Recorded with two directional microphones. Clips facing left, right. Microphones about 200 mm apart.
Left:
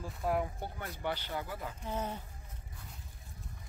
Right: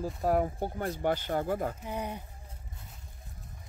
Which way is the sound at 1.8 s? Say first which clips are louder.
Right 2 dB; 15° right (ahead or behind).